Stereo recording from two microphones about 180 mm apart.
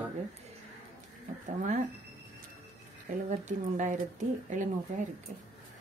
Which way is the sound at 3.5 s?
40° right (ahead or behind).